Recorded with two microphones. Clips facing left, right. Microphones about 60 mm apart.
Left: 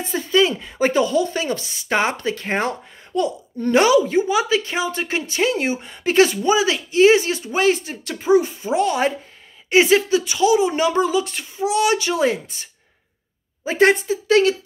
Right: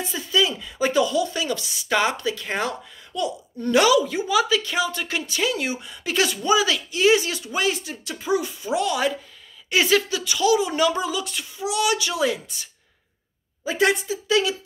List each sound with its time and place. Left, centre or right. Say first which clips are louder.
0.0 s speech: left 5 dB; left
13.7 s a woman's voice: left 5 dB; left